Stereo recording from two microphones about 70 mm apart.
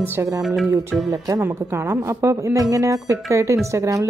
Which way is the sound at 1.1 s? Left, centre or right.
Right.